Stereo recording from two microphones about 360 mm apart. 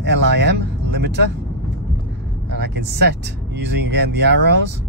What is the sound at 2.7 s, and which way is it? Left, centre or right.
Speech, right.